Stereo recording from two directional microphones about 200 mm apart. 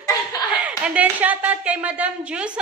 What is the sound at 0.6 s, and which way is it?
A woman's voice, 5° right (ahead or behind).